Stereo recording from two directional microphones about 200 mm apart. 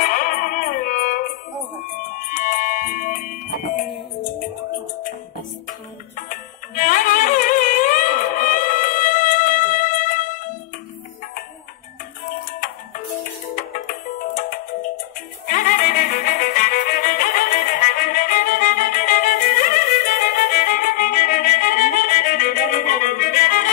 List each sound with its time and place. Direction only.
0.0 s music: 45° left (ahead or behind)
6.1 s music: 40° left (ahead or behind)
12.5 s music: 40° left (ahead or behind)
15.4 s violin: 45° left (ahead or behind)